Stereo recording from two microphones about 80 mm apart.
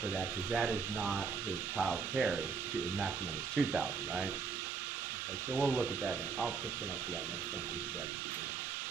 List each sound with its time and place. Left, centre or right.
0.5 s speech: centre
3.5 s speech: centre
5.5 s speech: centre